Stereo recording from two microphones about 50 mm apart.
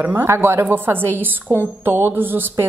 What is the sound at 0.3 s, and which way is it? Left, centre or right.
A woman's voice, right.